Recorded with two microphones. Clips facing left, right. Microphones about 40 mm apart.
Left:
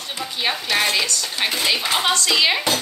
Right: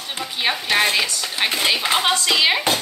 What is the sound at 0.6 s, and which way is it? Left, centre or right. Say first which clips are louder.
Speech: right 2 dB; centre.